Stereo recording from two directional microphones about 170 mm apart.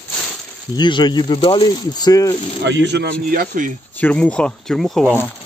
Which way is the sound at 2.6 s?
90° right.